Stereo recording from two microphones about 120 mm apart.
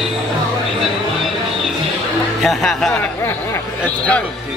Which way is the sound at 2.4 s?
Centre (ahead or behind).